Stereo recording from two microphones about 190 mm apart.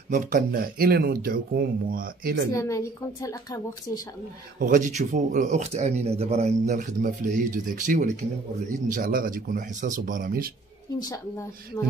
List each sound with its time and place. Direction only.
0.1 s speech: 45° right (ahead or behind)
2.5 s a woman's voice: 15° left (ahead or behind)
4.6 s speech: 45° right (ahead or behind)
11.0 s a woman's voice: 20° left (ahead or behind)